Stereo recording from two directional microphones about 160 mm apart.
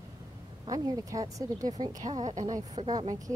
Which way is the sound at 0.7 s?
20° right (ahead or behind).